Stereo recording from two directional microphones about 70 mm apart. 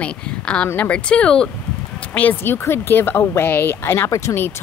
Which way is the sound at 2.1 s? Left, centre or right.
Left.